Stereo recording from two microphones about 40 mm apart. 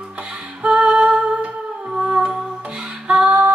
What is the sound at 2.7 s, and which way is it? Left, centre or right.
Music, right.